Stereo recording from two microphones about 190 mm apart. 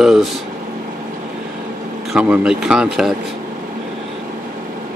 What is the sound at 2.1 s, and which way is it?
Speech, 5° right (ahead or behind).